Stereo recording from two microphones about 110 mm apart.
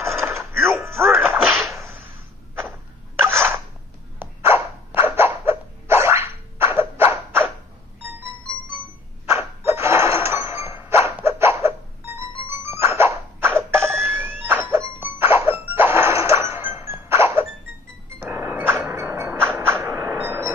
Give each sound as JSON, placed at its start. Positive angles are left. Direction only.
{"t": 0.2, "sound": "music", "side_deg": -25}
{"t": 1.3, "sound": "whip", "side_deg": 0}
{"t": 3.2, "sound": "a sound", "side_deg": -20}
{"t": 4.2, "sound": "dog", "side_deg": -20}
{"t": 8.2, "sound": "music", "side_deg": -20}
{"t": 9.3, "sound": "chink", "side_deg": -25}
{"t": 12.4, "sound": "music", "side_deg": -20}
{"t": 20.0, "sound": "a sound", "side_deg": -10}
{"t": 20.2, "sound": "train", "side_deg": -20}